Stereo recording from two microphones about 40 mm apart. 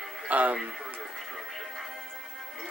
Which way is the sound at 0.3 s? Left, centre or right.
Right.